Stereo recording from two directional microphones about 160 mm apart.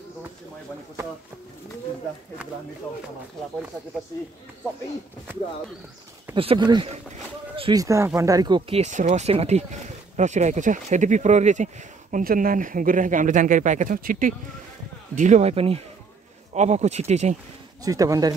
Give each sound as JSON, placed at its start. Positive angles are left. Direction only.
{"t": 6.3, "sound": "speech", "side_deg": -35}
{"t": 7.7, "sound": "speech", "side_deg": -20}
{"t": 17.8, "sound": "speech", "side_deg": -20}